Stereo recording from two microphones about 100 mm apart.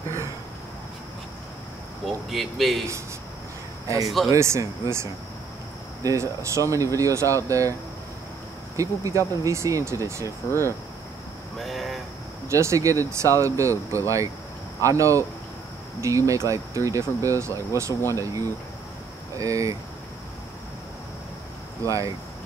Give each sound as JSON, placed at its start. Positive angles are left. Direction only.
{"t": 2.0, "sound": "speech", "side_deg": 0}
{"t": 4.3, "sound": "speech", "side_deg": -30}
{"t": 8.7, "sound": "speech", "side_deg": -35}
{"t": 11.6, "sound": "speech", "side_deg": 0}
{"t": 12.4, "sound": "speech", "side_deg": -30}
{"t": 21.8, "sound": "speech", "side_deg": -35}